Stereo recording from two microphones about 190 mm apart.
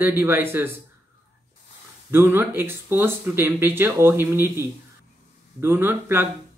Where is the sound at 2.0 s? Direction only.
10° right (ahead or behind).